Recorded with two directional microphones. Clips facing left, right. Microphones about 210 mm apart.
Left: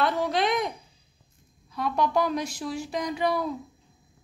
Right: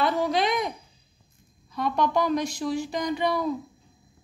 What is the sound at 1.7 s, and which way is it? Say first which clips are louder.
A woman's voice: right 1 dB; 5° left (ahead or behind).